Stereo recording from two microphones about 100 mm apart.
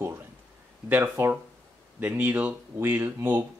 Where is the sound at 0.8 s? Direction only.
15° right (ahead or behind).